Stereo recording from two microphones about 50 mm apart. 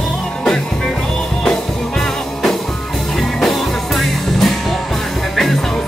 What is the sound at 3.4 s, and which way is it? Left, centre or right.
Music, centre.